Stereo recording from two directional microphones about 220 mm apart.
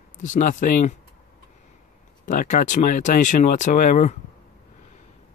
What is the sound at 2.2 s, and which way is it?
Speech, 35° left (ahead or behind).